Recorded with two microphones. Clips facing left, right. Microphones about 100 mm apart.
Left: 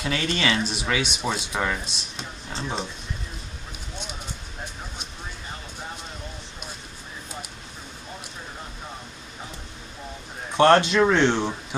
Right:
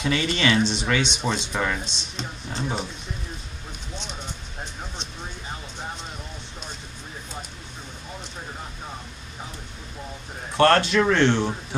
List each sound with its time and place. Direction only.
0.0 s speech: centre (ahead or behind)
10.5 s speech: 20° left (ahead or behind)